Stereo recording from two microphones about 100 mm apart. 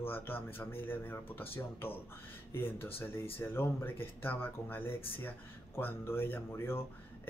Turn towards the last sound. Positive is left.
turn(degrees=25)  # may be behind; listen again after turning